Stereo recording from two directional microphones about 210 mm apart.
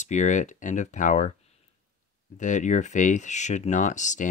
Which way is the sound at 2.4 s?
35° left (ahead or behind).